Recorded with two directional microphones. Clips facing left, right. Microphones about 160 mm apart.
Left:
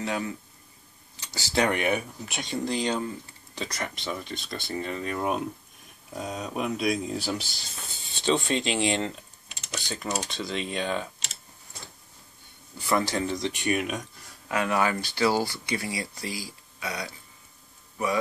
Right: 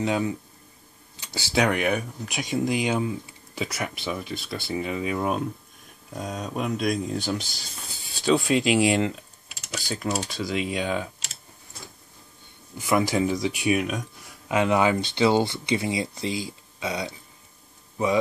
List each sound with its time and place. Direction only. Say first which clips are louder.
0.0 s speech: right 5 dB; 20° right (ahead or behind)
12.8 s speech: right 4 dB; 10° right (ahead or behind)
14.5 s a man's voice: right 4 dB; 20° right (ahead or behind)